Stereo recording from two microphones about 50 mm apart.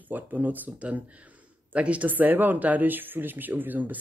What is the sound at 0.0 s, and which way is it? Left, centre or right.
Speech, right.